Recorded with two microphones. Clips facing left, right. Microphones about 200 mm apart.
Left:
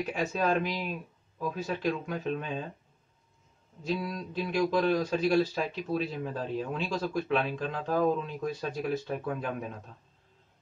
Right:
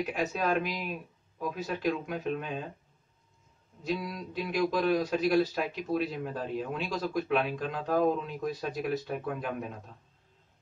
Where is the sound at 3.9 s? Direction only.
10° right (ahead or behind).